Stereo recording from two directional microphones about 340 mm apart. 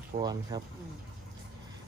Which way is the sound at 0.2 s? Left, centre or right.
Centre.